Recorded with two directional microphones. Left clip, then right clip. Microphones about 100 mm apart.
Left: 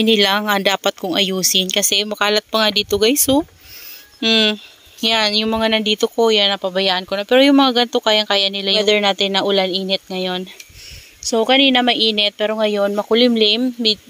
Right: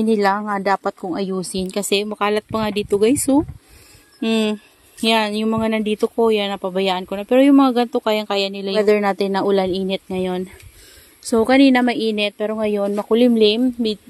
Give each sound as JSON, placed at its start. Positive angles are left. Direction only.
{"t": 0.0, "sound": "speech", "side_deg": 35}
{"t": 1.6, "sound": "speech", "side_deg": -20}
{"t": 8.8, "sound": "speech", "side_deg": 5}
{"t": 9.1, "sound": "a woman's voice", "side_deg": -35}
{"t": 11.8, "sound": "speech", "side_deg": -30}